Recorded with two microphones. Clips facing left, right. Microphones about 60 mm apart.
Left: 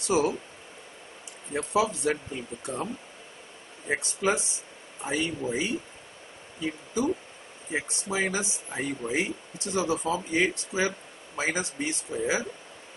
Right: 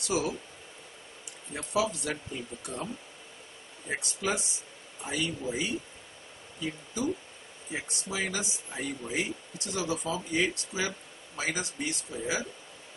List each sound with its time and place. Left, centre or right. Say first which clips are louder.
0.0 s speech: left 5 dB; left
1.5 s speech: left 4 dB; left
6.6 s speech: left 4 dB; left